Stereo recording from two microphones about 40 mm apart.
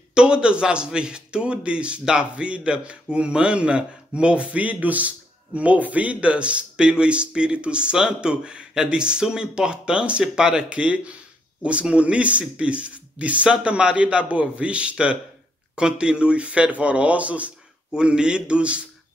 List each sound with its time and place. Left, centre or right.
0.1 s a man's voice: right
10.7 s a man's voice: right
17.9 s a man's voice: right